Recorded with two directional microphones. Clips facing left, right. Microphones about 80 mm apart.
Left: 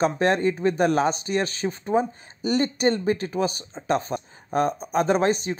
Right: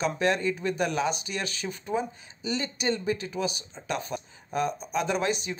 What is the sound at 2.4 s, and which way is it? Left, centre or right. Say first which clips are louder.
Speech: left 9 dB; left.